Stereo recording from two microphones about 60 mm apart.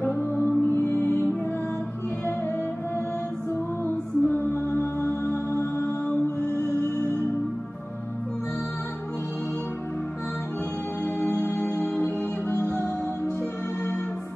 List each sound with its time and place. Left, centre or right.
0.0 s music: left
3.8 s music: left
11.1 s music: left